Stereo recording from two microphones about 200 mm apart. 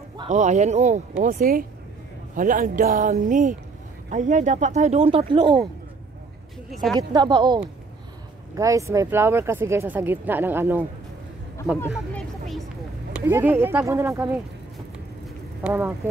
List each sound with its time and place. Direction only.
0.3 s speech: 35° right (ahead or behind)
6.7 s speech: centre (ahead or behind)
7.0 s speech: 20° right (ahead or behind)
11.9 s vehicle: 5° left (ahead or behind)
13.2 s speech: 10° right (ahead or behind)
15.6 s speech: 10° right (ahead or behind)